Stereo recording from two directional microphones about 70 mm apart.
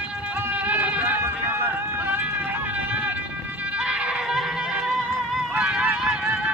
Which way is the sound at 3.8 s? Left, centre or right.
Centre.